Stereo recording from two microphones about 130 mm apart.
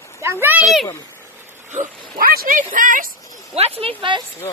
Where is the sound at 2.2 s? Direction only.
90° right.